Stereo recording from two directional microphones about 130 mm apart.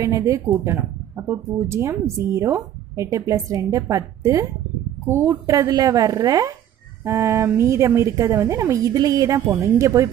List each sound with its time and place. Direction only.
0.0 s speech: 25° right (ahead or behind)